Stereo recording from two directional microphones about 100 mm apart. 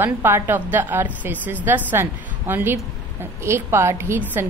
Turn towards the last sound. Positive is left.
turn(degrees=-25)  # may be behind; listen again after turning